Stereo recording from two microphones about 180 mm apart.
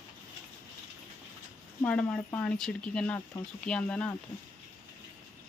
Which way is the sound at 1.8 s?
5° left (ahead or behind).